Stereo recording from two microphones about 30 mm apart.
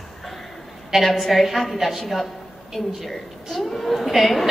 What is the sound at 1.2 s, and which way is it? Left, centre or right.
A woman's voice, centre.